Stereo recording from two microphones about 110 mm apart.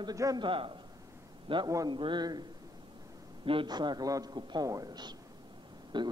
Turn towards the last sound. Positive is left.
turn(degrees=-45)  # may be behind; listen again after turning